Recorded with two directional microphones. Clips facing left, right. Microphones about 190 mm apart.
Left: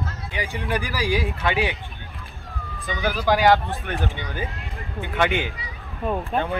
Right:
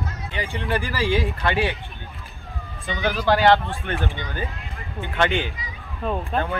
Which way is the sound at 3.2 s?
10° left (ahead or behind).